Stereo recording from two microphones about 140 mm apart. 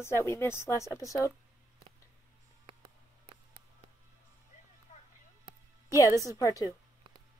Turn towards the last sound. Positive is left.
turn(degrees=25)  # may be behind; listen again after turning